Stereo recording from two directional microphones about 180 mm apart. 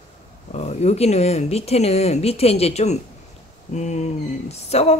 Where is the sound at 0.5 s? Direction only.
35° left (ahead or behind).